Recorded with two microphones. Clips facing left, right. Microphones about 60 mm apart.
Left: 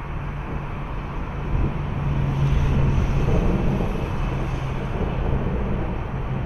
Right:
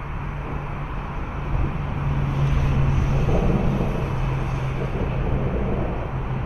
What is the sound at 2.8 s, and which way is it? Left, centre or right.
Vehicle, right.